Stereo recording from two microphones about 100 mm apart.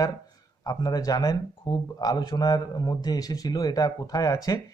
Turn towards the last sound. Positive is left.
turn(degrees=35)  # may be behind; listen again after turning